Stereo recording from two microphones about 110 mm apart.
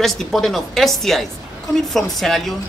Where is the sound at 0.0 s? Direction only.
5° left (ahead or behind).